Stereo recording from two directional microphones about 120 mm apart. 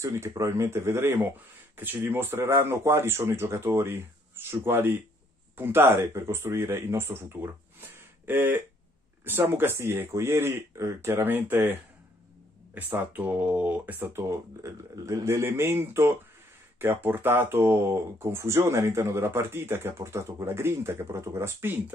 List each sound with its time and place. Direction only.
0.0 s speech: 25° right (ahead or behind)